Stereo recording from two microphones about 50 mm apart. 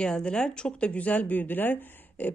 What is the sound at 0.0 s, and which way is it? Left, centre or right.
Speech, centre.